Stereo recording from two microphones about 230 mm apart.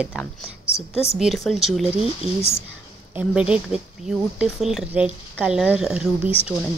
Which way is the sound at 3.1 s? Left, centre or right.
Centre.